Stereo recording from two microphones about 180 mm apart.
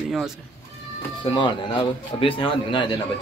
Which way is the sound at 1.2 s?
25° left (ahead or behind).